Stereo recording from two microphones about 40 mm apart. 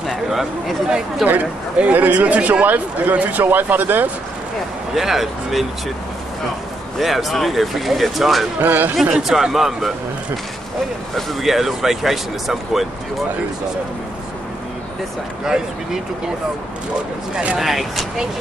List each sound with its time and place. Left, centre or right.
0.1 s speech: centre
1.2 s speech: right
3.4 s speech: right
4.9 s speech: centre
7.0 s speech: centre
8.5 s speech: right
9.1 s speech: centre
11.4 s speech: centre
15.4 s speech: centre
17.6 s speech: centre